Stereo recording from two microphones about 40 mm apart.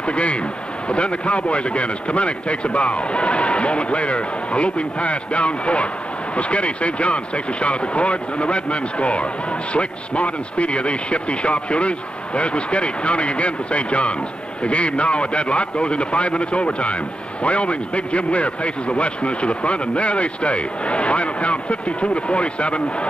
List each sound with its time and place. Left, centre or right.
0.0 s a man's voice: left